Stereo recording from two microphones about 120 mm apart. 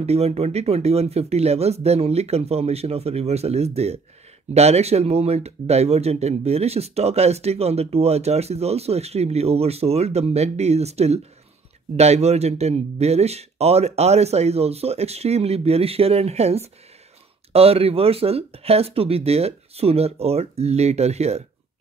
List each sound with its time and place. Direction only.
0.0 s speech: 60° right (ahead or behind)